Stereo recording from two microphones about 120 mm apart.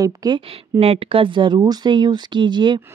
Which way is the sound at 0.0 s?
30° right (ahead or behind).